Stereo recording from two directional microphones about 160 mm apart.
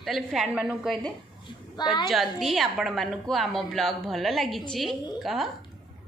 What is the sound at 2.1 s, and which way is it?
A woman's voice, centre (ahead or behind).